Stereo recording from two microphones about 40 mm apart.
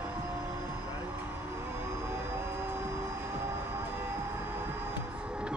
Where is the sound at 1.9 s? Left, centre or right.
Right.